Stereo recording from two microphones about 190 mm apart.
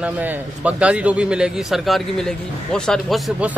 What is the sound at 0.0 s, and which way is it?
Speech, 10° right (ahead or behind).